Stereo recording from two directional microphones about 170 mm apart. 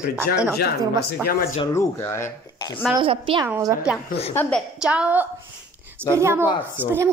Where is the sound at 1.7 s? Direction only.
15° left (ahead or behind).